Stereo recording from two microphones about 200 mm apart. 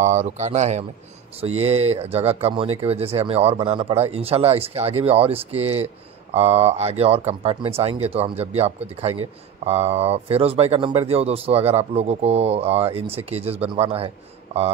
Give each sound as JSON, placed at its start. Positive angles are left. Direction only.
{"t": 0.0, "sound": "speech", "side_deg": -35}